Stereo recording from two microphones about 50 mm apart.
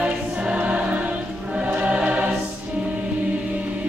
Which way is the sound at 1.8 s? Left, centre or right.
Right.